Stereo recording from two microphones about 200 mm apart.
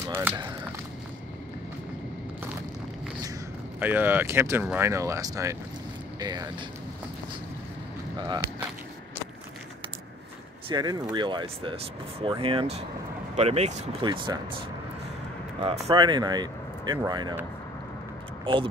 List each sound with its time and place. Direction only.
0.1 s speech: 10° right (ahead or behind)
3.8 s speech: 10° right (ahead or behind)
10.7 s speech: 20° right (ahead or behind)
15.6 s speech: 25° right (ahead or behind)
18.4 s speech: 25° right (ahead or behind)